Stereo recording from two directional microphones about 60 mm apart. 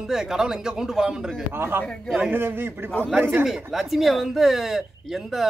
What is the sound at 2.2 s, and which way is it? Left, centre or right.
Speech, right.